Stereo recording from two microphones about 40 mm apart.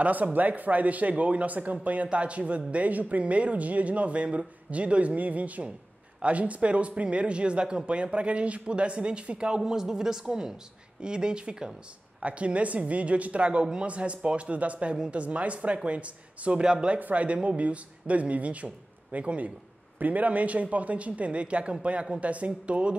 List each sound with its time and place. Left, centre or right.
0.0 s speech: right
9.6 s a woman's voice: centre
17.0 s speech: right